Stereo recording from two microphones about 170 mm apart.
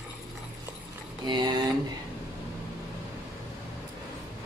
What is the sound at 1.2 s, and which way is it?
Speech, 25° right (ahead or behind).